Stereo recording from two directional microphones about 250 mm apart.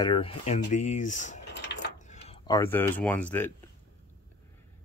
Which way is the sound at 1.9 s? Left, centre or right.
Left.